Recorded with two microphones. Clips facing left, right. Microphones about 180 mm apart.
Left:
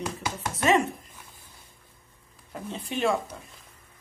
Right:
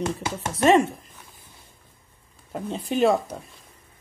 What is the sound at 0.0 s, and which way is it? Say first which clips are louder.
Speech: right 4 dB; 25° right (ahead or behind).